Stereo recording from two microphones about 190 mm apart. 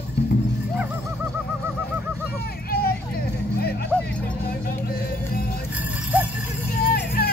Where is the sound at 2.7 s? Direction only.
55° left (ahead or behind).